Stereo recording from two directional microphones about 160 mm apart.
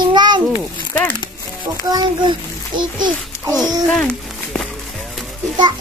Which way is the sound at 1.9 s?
25° right (ahead or behind).